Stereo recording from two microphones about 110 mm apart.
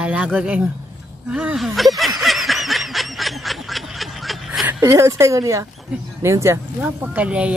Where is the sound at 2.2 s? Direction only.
Centre (ahead or behind).